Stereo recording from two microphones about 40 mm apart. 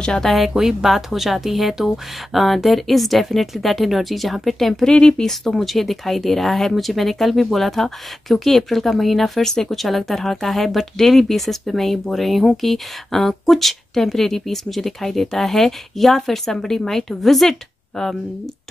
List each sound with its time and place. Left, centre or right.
0.0 s speech: centre
0.6 s speech: centre
4.8 s a woman's voice: centre